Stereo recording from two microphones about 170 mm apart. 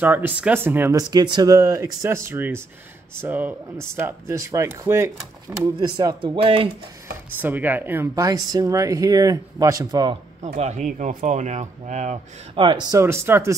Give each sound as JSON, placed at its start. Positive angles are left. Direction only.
{"t": 0.0, "sound": "speech", "side_deg": -10}
{"t": 7.3, "sound": "speech", "side_deg": -10}
{"t": 10.6, "sound": "speech", "side_deg": -45}
{"t": 12.6, "sound": "speech", "side_deg": -25}
{"t": 13.0, "sound": "speech", "side_deg": -15}